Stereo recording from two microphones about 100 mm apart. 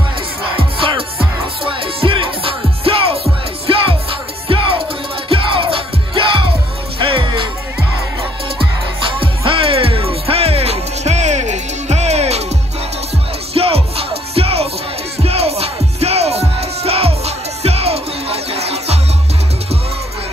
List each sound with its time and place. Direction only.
0.6 s music: 60° right (ahead or behind)
5.3 s music: 65° right (ahead or behind)
9.2 s music: 65° right (ahead or behind); by 12.4 s 90° right
13.5 s music: 80° right